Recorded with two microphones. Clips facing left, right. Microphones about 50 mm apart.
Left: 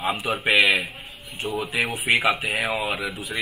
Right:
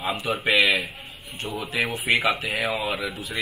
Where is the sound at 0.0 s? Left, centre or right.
Centre.